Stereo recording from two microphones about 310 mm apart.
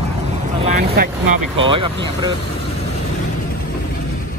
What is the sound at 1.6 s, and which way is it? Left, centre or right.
Speech, centre.